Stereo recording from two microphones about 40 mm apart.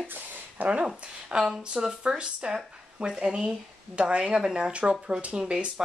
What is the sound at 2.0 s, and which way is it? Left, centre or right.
Speech, right.